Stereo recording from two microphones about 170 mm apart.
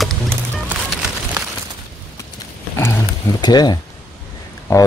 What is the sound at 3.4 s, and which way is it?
Speech, 25° left (ahead or behind).